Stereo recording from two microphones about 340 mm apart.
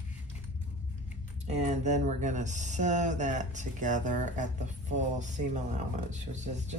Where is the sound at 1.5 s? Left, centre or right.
Centre.